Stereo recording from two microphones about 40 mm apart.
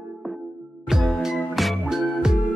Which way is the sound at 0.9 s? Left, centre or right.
Centre.